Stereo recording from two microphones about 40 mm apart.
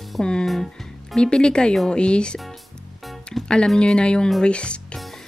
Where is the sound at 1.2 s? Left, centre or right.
Left.